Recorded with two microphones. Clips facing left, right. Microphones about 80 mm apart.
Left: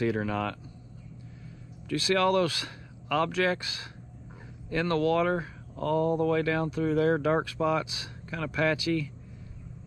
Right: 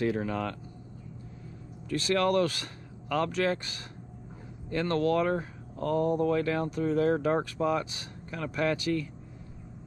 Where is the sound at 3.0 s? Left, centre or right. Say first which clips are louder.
Left 1 dB; left.